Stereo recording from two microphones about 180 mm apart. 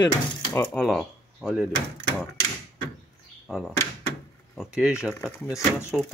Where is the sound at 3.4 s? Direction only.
Centre (ahead or behind).